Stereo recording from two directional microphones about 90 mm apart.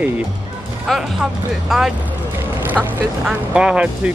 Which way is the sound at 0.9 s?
5° left (ahead or behind).